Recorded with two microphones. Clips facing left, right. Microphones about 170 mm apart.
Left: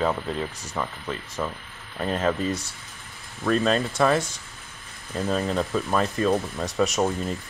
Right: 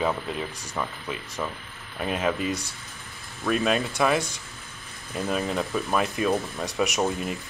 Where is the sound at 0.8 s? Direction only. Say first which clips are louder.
Left 1 dB; centre (ahead or behind).